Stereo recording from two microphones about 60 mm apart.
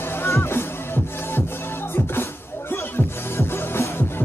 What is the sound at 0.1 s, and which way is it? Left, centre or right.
Music, left.